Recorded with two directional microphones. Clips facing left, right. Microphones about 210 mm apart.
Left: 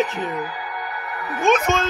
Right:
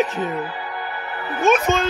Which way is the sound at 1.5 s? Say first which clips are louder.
Right 1 dB; 15° right (ahead or behind).